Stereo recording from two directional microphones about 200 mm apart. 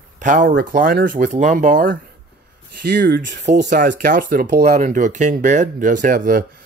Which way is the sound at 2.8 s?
50° right (ahead or behind).